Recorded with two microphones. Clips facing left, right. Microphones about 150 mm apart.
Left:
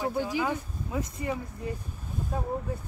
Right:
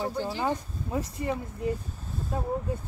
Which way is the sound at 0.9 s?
30° right (ahead or behind).